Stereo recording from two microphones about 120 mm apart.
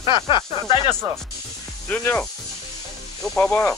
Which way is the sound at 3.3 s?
10° left (ahead or behind).